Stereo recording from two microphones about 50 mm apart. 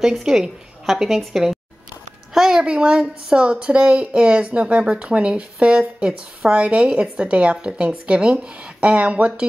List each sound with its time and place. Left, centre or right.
0.0 s a woman's voice: centre
2.6 s speech: right